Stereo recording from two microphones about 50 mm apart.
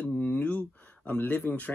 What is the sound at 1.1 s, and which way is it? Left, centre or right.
Speech, left.